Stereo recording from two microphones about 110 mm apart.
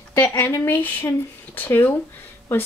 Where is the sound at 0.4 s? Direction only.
20° left (ahead or behind).